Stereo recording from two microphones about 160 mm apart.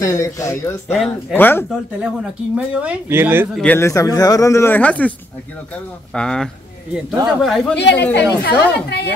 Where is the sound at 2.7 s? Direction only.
10° right (ahead or behind).